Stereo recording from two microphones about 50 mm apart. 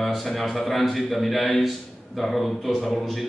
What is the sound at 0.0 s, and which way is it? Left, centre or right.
A man's voice, centre.